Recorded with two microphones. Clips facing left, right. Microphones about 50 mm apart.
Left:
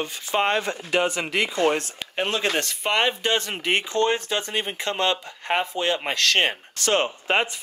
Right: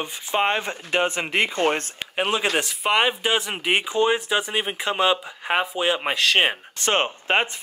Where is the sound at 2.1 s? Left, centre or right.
Centre.